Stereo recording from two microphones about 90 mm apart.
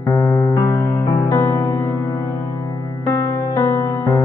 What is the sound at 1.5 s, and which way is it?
Music, 50° left (ahead or behind).